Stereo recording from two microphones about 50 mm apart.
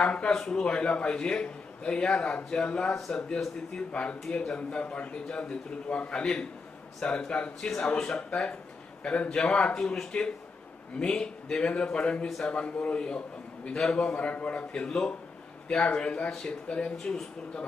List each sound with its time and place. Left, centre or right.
0.3 s a man's voice: centre
8.2 s a man's voice: left
13.7 s speech: centre
14.1 s a man's voice: left; by 17.2 s centre